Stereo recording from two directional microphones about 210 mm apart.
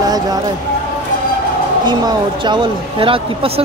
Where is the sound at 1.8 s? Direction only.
20° right (ahead or behind).